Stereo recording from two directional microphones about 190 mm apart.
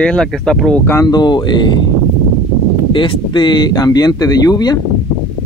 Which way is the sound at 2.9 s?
25° left (ahead or behind).